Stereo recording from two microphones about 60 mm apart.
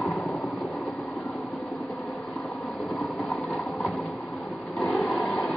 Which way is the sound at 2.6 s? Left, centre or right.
Centre.